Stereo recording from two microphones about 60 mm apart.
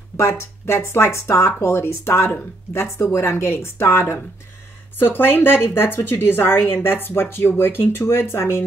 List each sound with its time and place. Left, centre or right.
0.2 s a woman's voice: left